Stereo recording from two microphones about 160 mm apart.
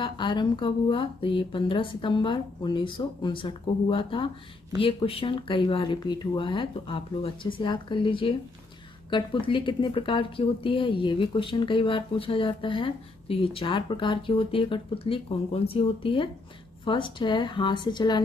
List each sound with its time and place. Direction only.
0.0 s speech: 30° left (ahead or behind)